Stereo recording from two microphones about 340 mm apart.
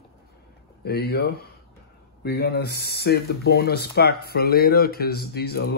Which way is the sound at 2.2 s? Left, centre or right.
Left.